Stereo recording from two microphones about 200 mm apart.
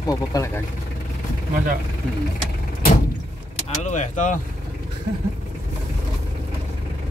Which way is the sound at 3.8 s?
40° left (ahead or behind).